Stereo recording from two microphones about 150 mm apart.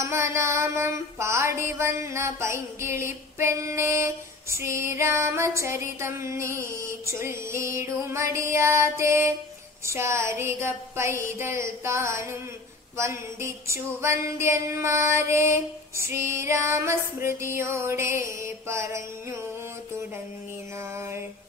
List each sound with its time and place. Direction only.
0.0 s music: 20° right (ahead or behind)
9.8 s a sound: 20° right (ahead or behind)
12.9 s music: 20° right (ahead or behind)
20.9 s music: 15° right (ahead or behind)